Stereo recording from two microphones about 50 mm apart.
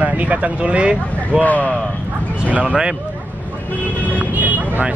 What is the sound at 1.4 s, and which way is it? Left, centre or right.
Speech, left.